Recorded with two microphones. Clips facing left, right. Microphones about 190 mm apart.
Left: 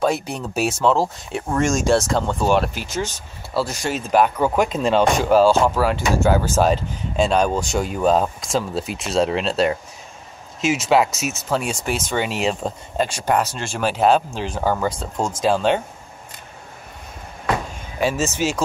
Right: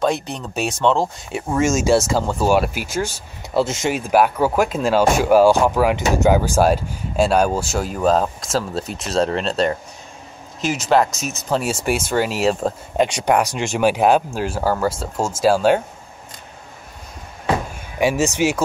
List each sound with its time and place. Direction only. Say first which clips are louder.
0.0 s speech: even; 5° left (ahead or behind); by 3.2 s 10° right (ahead or behind)
3.5 s speech: right 4 dB; 20° right (ahead or behind)
3.9 s speech: even; 10° right (ahead or behind)
12.9 s speech: right 3 dB; 15° right (ahead or behind)
17.9 s speech: right 3 dB; 15° right (ahead or behind)